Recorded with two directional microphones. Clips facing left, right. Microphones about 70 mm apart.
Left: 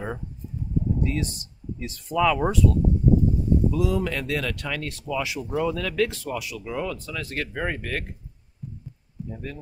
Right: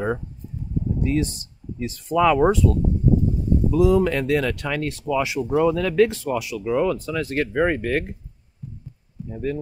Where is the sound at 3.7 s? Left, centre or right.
Right.